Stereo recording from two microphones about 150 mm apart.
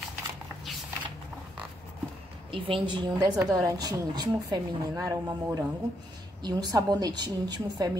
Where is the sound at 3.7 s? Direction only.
25° right (ahead or behind).